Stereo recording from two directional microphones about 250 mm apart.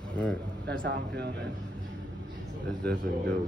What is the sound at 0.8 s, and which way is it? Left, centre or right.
Speech, right.